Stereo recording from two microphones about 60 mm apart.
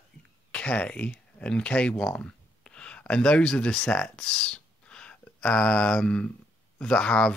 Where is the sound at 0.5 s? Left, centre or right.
Centre.